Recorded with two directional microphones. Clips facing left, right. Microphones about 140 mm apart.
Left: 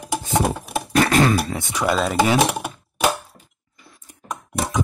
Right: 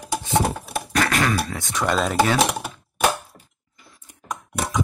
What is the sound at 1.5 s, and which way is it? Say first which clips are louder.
Speech: left 2 dB; 10° left (ahead or behind).